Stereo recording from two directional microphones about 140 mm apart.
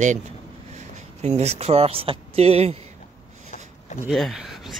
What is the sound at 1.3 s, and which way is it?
Speech, 50° right (ahead or behind).